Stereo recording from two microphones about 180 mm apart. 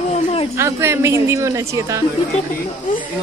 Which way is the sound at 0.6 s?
15° right (ahead or behind).